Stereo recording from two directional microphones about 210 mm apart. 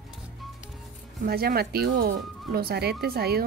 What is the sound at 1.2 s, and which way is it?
Speech, 45° right (ahead or behind).